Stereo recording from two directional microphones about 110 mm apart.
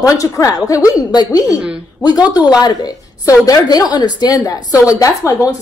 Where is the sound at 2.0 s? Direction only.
40° left (ahead or behind).